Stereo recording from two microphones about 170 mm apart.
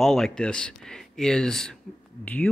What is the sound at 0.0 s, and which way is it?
Speech, centre (ahead or behind).